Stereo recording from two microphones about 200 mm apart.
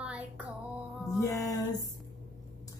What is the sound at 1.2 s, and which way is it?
Music, 15° left (ahead or behind).